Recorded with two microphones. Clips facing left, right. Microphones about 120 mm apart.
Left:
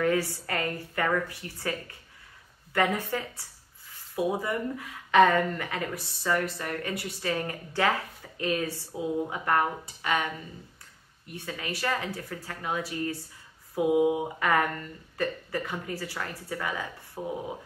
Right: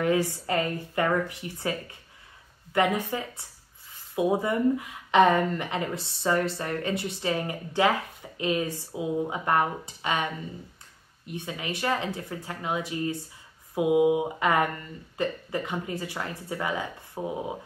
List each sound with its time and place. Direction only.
0.0 s a woman's voice: 20° right (ahead or behind)
11.3 s a woman's voice: 20° right (ahead or behind)